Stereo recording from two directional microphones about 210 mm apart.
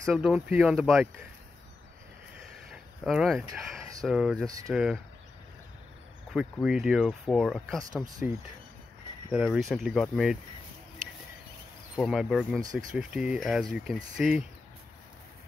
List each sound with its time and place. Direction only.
0.0 s speech: centre (ahead or behind)
2.7 s a sound: centre (ahead or behind)
4.0 s speech: centre (ahead or behind)
4.5 s speech: 15° right (ahead or behind)
4.7 s speech: centre (ahead or behind)
6.3 s speech: 5° right (ahead or behind)
9.3 s speech: centre (ahead or behind)
12.0 s speech: centre (ahead or behind)